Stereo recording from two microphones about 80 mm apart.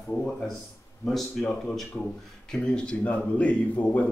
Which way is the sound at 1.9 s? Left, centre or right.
Centre.